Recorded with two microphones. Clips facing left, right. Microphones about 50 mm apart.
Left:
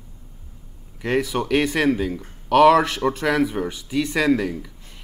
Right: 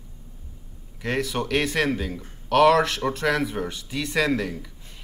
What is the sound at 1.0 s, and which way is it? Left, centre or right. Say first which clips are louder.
Speech: left 4 dB; centre.